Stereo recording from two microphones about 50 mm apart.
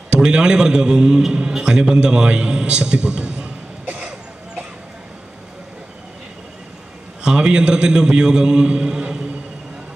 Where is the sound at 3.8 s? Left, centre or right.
Right.